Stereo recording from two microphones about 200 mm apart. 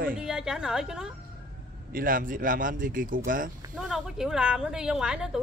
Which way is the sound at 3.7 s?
Centre (ahead or behind).